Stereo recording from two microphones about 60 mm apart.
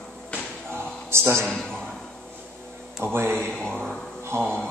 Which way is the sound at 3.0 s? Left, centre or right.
Right.